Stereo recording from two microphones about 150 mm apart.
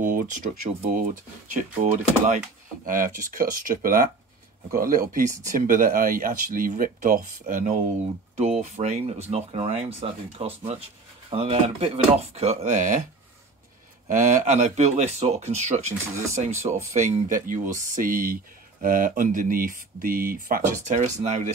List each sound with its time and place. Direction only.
0.0 s a sound: 60° right (ahead or behind)
1.6 s speech: 55° right (ahead or behind)
14.0 s speech: 55° right (ahead or behind)